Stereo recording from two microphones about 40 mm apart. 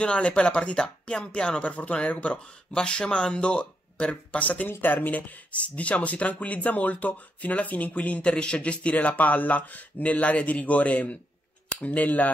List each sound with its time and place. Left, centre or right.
0.0 s speech: left
2.7 s speech: left
4.8 s speech: left
5.6 s speech: left
8.2 s speech: left